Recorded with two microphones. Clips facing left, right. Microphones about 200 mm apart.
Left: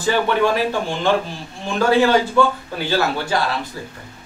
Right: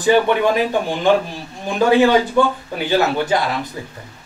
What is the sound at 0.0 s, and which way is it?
A man's voice, 15° right (ahead or behind).